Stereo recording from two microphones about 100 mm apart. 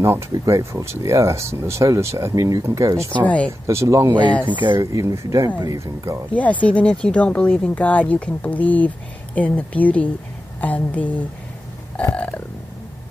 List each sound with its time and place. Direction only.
0.0 s speech: 30° right (ahead or behind)
3.3 s speech: 15° left (ahead or behind)
3.6 s speech: 30° right (ahead or behind)
4.5 s speech: 50° right (ahead or behind)
4.9 s speech: 30° right (ahead or behind)
6.3 s speech: 15° left (ahead or behind)
11.9 s burping: 15° left (ahead or behind)